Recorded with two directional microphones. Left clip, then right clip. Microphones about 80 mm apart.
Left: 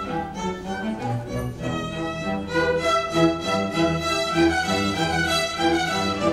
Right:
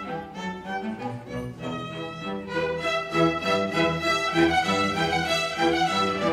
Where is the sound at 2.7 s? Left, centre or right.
Left.